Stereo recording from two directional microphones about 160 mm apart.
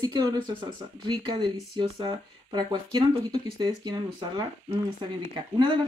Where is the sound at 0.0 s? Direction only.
25° right (ahead or behind).